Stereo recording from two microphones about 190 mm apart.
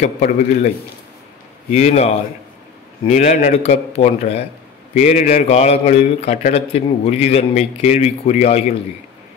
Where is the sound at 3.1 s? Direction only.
40° left (ahead or behind).